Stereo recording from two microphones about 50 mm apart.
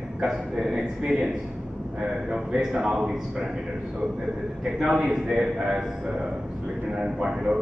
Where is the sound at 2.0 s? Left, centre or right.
Centre.